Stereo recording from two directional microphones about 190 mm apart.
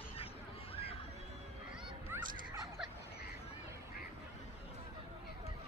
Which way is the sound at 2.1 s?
10° right (ahead or behind).